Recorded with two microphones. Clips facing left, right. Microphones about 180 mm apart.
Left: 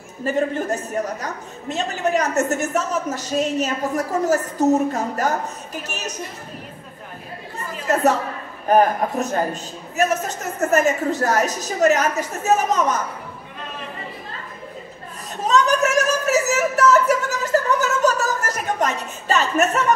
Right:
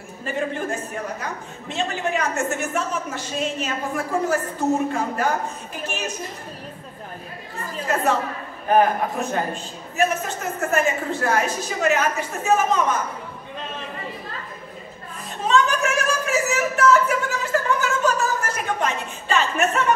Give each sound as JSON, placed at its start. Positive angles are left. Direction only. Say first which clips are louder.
{"t": 0.2, "sound": "a woman's voice", "louder": "left 5 dB", "side_deg": 40}
{"t": 7.9, "sound": "a woman's voice", "louder": "left 4 dB", "side_deg": 40}
{"t": 15.4, "sound": "a sound", "louder": "left 2 dB", "side_deg": 40}